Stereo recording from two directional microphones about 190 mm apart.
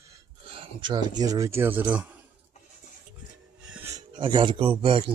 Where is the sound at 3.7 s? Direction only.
10° right (ahead or behind).